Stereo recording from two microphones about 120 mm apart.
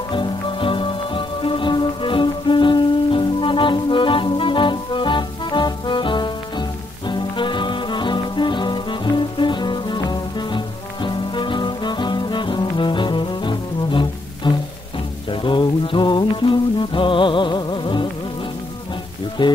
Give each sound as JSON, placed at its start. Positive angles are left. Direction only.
{"t": 0.1, "sound": "music", "side_deg": 45}
{"t": 19.4, "sound": "music", "side_deg": 40}